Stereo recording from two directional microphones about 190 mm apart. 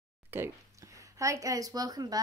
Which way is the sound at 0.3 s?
10° right (ahead or behind).